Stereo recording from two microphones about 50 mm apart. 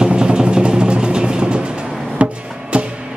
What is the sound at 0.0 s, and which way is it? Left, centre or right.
Music, centre.